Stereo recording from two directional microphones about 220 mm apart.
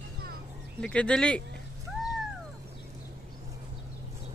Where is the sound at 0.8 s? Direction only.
5° left (ahead or behind).